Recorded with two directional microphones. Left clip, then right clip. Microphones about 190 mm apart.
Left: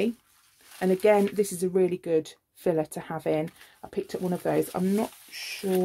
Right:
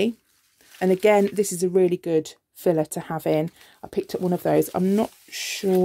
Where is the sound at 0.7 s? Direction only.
45° right (ahead or behind).